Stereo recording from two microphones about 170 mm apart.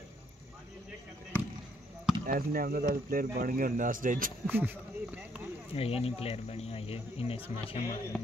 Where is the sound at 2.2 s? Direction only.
55° right (ahead or behind).